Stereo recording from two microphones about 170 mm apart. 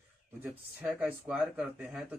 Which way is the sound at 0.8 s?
5° right (ahead or behind).